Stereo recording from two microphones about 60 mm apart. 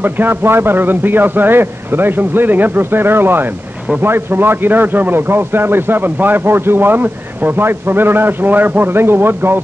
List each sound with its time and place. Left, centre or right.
0.0 s a man's voice: right